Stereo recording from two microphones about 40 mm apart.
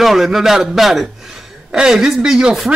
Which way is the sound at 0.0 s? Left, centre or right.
Centre.